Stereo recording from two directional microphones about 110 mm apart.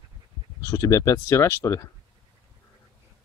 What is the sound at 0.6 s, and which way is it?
Speech, 30° left (ahead or behind).